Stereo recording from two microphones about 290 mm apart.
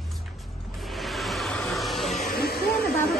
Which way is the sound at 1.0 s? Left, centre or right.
Centre.